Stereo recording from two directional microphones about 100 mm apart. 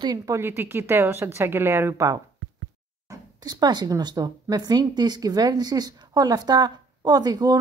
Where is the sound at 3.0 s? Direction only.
40° right (ahead or behind).